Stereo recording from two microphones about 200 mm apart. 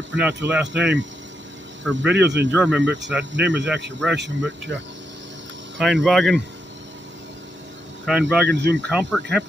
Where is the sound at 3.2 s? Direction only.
60° right (ahead or behind).